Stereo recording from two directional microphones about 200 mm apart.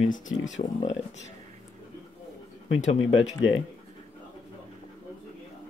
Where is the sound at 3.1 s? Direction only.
70° left (ahead or behind).